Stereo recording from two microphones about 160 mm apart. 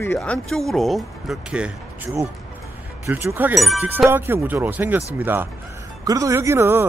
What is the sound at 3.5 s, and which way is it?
Speech, centre (ahead or behind).